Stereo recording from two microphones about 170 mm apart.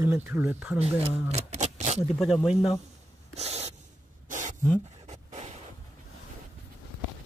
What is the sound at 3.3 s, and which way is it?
Spray, 40° right (ahead or behind).